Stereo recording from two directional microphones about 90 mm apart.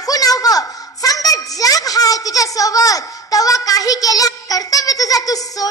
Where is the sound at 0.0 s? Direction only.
45° left (ahead or behind).